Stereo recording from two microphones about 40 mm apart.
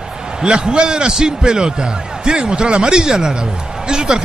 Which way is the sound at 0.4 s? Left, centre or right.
Centre.